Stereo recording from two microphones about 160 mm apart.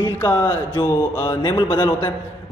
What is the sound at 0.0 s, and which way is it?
Music, 20° left (ahead or behind).